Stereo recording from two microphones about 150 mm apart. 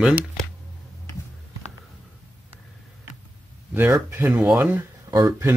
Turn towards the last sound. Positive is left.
turn(degrees=-20)  # may be behind; listen again after turning